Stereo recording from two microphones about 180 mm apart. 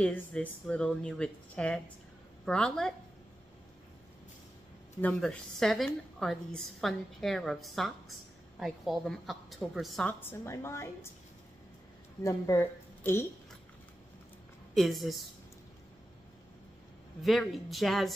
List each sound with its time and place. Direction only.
0.0 s a woman's voice: 10° left (ahead or behind)
5.0 s a woman's voice: 5° left (ahead or behind)
10.0 s speech: 15° left (ahead or behind)
12.2 s a woman's voice: 15° left (ahead or behind)
14.7 s a woman's voice: centre (ahead or behind)
17.2 s a woman's voice: centre (ahead or behind)